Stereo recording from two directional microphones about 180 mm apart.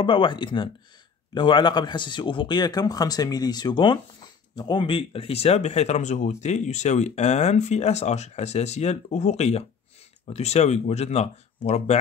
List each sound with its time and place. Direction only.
0.0 s speech: 25° left (ahead or behind)